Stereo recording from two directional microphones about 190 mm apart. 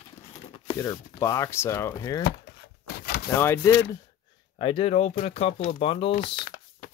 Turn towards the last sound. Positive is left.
turn(degrees=30)  # may be behind; listen again after turning